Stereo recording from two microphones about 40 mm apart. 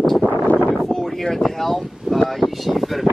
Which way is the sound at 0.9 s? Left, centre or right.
Centre.